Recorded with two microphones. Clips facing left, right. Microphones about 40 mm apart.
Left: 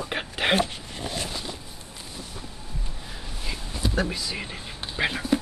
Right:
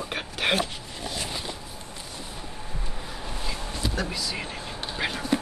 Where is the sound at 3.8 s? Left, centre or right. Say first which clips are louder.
Left 4 dB; centre.